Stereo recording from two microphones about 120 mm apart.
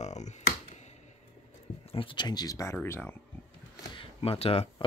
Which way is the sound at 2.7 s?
15° left (ahead or behind).